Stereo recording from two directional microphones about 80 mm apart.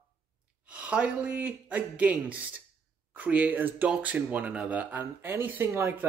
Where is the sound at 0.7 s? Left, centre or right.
Centre.